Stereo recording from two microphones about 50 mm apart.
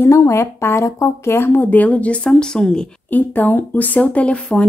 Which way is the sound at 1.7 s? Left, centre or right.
Left.